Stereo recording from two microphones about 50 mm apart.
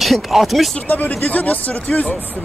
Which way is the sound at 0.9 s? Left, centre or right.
Left.